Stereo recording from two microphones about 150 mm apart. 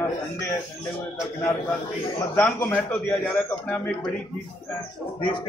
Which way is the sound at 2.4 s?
10° left (ahead or behind).